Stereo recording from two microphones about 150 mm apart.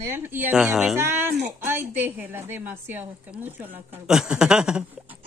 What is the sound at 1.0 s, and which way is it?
A woman's voice, 15° right (ahead or behind).